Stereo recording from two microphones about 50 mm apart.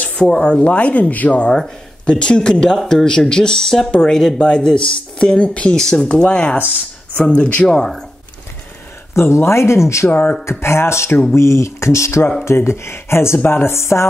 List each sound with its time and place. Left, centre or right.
0.1 s speech: centre
0.6 s speech: left
2.0 s speech: centre
6.0 s speech: left
7.6 s speech: centre
9.1 s speech: left
10.0 s speech: left
10.6 s speech: left
12.4 s speech: left